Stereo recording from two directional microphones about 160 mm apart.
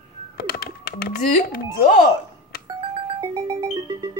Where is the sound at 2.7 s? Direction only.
30° right (ahead or behind).